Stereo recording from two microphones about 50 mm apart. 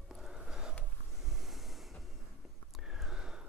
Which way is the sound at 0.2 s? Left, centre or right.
Centre.